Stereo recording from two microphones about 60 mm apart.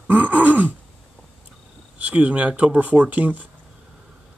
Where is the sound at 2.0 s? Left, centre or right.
Right.